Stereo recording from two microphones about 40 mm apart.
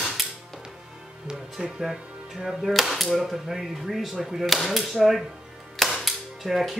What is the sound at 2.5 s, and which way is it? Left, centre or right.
Speech, centre.